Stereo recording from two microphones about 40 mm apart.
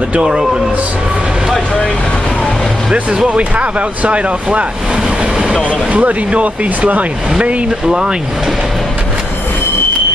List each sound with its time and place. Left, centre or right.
0.1 s speech: right
3.3 s speech: right
5.9 s speech: right
7.9 s speech: centre